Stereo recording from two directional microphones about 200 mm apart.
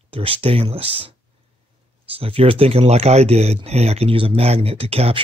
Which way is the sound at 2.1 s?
25° right (ahead or behind).